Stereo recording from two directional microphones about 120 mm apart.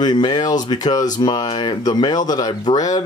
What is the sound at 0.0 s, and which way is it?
Speech, 35° left (ahead or behind).